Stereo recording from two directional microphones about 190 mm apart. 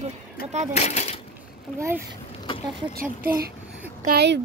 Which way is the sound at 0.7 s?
35° left (ahead or behind).